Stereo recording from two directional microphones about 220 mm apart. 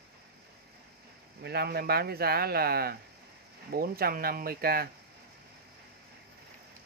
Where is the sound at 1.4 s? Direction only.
45° right (ahead or behind).